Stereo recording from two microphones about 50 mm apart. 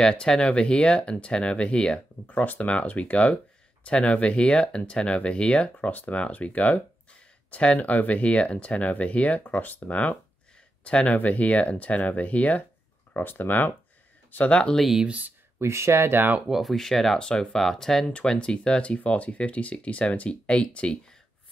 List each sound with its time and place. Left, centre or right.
0.0 s speech: centre
2.2 s speech: left
13.1 s speech: left
14.5 s speech: centre
15.0 s speech: right
15.6 s speech: right
16.4 s speech: centre
16.7 s speech: centre